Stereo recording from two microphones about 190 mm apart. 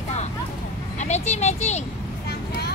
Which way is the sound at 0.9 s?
35° left (ahead or behind).